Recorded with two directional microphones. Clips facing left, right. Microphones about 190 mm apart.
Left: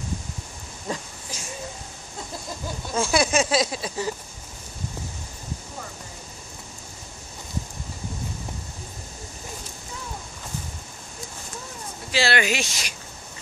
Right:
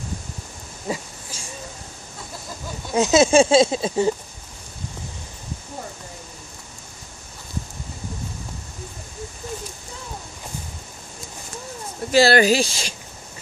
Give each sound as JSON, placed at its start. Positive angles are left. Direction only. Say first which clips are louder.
{"t": 0.9, "sound": "speech", "louder": "right 3 dB", "side_deg": -10}
{"t": 2.9, "sound": "speech", "louder": "right 7 dB", "side_deg": -20}
{"t": 12.1, "sound": "speech", "louder": "right 8 dB", "side_deg": -40}